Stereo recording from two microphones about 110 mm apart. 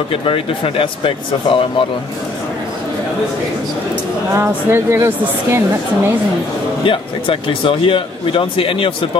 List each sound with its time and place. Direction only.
0.1 s a man's voice: 55° left (ahead or behind)
4.3 s speech: 25° right (ahead or behind)
6.8 s a man's voice: 50° left (ahead or behind)